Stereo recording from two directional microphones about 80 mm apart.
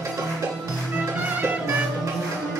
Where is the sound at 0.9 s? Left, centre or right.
Right.